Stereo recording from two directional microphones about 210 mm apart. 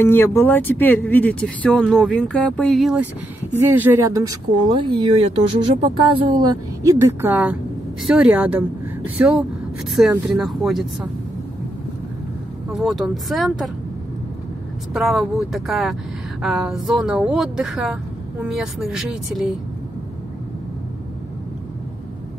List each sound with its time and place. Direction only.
0.0 s speech: 10° left (ahead or behind)
12.7 s speech: centre (ahead or behind)
15.0 s speech: centre (ahead or behind)